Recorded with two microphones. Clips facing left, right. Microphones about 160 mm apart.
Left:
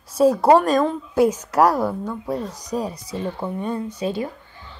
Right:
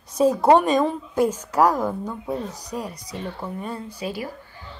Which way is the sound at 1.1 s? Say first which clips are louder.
Left 4 dB; 10° left (ahead or behind).